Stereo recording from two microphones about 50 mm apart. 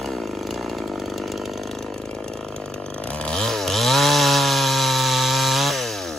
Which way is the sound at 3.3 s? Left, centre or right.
Centre.